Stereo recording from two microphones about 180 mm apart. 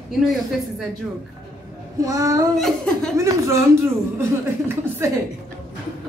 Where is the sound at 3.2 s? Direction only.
20° right (ahead or behind).